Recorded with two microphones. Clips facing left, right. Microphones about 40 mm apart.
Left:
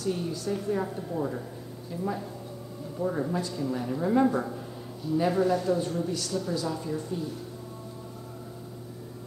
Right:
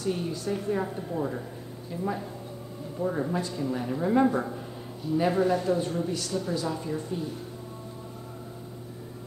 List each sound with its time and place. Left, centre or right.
0.0 s speech: right
3.0 s speech: right